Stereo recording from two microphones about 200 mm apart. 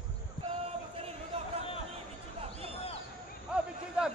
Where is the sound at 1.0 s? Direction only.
30° right (ahead or behind).